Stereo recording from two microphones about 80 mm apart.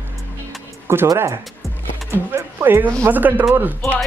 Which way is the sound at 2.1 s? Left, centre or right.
Right.